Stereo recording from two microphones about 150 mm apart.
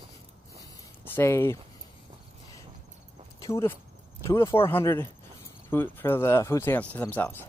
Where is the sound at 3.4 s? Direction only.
20° left (ahead or behind).